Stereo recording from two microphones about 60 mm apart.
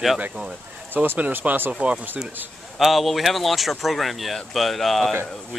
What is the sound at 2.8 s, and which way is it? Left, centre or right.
Speech, centre.